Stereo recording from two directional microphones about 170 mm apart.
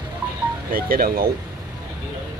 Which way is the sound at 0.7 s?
60° right (ahead or behind).